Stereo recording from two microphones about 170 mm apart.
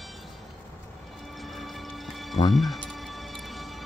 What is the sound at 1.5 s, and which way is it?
Music, centre (ahead or behind).